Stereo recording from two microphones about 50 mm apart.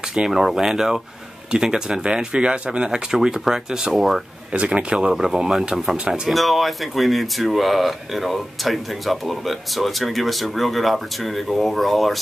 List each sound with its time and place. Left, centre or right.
0.1 s speech: centre
4.7 s speech: centre
6.3 s speech: centre